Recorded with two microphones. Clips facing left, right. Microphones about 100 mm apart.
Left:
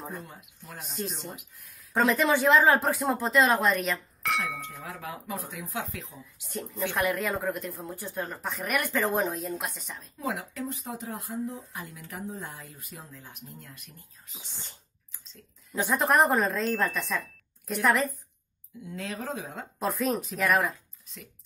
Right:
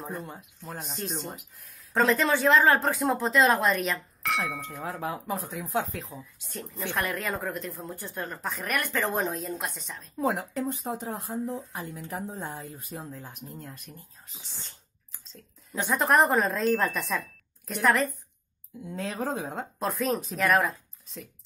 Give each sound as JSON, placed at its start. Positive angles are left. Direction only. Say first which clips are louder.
{"t": 0.2, "sound": "speech", "louder": "right 5 dB", "side_deg": -30}
{"t": 0.7, "sound": "a woman's voice", "louder": "even", "side_deg": 0}
{"t": 2.0, "sound": "a woman's voice", "louder": "even", "side_deg": 10}
{"t": 4.8, "sound": "speech", "louder": "right 8 dB", "side_deg": -35}
{"t": 6.9, "sound": "a woman's voice", "louder": "left 1 dB", "side_deg": 10}
{"t": 10.2, "sound": "speech", "louder": "right 5 dB", "side_deg": -40}
{"t": 15.7, "sound": "a woman's voice", "louder": "right 1 dB", "side_deg": 0}
{"t": 18.9, "sound": "speech", "louder": "right 4 dB", "side_deg": -35}
{"t": 19.8, "sound": "a woman's voice", "louder": "even", "side_deg": 0}